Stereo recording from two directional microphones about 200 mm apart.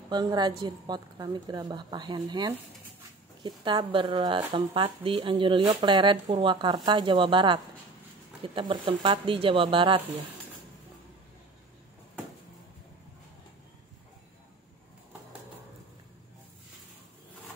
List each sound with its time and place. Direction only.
0.1 s speech: 20° right (ahead or behind)